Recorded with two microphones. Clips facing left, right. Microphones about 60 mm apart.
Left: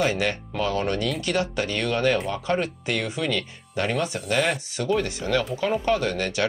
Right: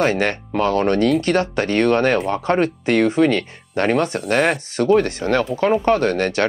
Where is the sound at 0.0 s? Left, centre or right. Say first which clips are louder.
Right 5 dB; right.